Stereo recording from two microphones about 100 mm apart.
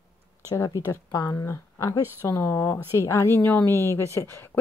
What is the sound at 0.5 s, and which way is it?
Speech, 35° left (ahead or behind).